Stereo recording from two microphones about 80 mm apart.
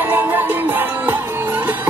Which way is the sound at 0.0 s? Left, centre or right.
Right.